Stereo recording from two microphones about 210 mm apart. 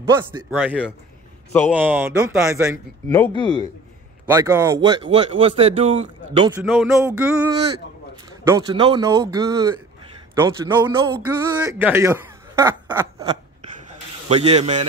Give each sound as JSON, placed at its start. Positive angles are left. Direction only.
{"t": 0.2, "sound": "a man's voice", "side_deg": -15}
{"t": 3.1, "sound": "speech", "side_deg": 20}
{"t": 4.3, "sound": "a man's voice", "side_deg": -15}
{"t": 6.6, "sound": "a man's voice", "side_deg": 0}
{"t": 14.3, "sound": "a man's voice", "side_deg": -30}